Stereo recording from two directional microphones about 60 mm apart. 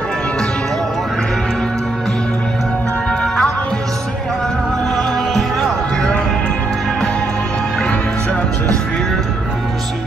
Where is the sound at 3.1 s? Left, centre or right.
Centre.